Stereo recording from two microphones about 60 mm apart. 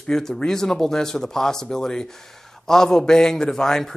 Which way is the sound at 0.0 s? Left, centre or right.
Centre.